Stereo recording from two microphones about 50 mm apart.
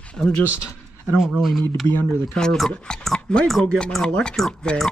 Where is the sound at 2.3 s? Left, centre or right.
Centre.